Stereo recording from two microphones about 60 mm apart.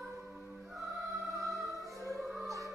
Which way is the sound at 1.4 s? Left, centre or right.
Centre.